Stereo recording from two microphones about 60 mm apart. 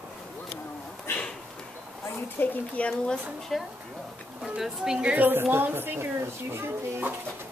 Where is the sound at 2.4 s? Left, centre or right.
Left.